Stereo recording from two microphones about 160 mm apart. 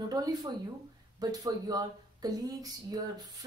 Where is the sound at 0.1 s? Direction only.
25° right (ahead or behind).